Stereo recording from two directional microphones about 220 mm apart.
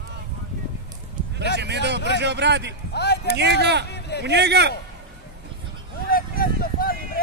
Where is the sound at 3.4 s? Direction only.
50° right (ahead or behind).